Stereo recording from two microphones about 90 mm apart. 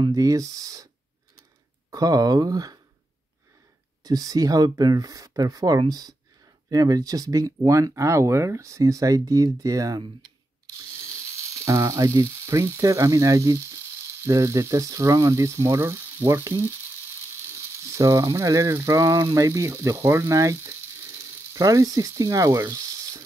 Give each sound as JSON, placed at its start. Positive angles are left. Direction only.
{"t": 0.1, "sound": "speech", "side_deg": -40}
{"t": 1.9, "sound": "speech", "side_deg": -45}
{"t": 4.0, "sound": "speech", "side_deg": -40}
{"t": 11.5, "sound": "speech", "side_deg": -35}
{"t": 17.6, "sound": "sizzle", "side_deg": -35}
{"t": 19.3, "sound": "speech", "side_deg": -35}
{"t": 21.2, "sound": "mechanisms", "side_deg": -40}